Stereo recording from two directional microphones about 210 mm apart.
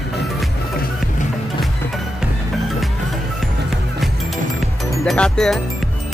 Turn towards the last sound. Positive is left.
turn(degrees=5)  # may be behind; listen again after turning